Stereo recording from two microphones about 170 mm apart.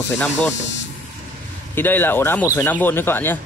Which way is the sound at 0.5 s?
90° left.